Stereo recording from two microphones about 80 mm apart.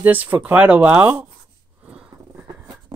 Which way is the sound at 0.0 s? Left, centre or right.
Right.